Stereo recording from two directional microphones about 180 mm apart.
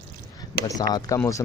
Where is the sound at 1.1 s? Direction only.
15° left (ahead or behind).